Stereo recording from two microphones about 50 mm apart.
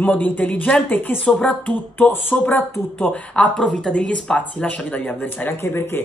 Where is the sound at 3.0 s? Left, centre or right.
Left.